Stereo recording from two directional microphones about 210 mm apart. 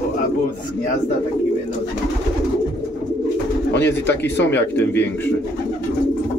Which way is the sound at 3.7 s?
55° left (ahead or behind).